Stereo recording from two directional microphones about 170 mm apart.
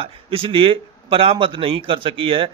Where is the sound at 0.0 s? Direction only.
30° right (ahead or behind).